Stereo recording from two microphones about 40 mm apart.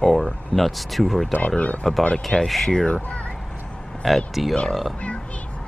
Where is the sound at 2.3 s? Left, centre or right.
Left.